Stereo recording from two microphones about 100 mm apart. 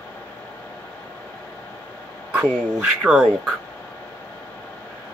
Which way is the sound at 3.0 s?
5° right (ahead or behind).